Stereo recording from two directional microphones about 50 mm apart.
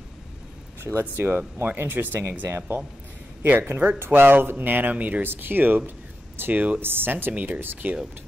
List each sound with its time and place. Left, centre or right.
0.8 s speech: right
5.3 s speech: right
6.9 s speech: right
7.8 s speech: right